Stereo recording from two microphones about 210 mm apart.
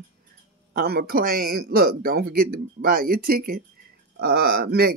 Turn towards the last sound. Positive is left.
turn(degrees=-45)  # may be behind; listen again after turning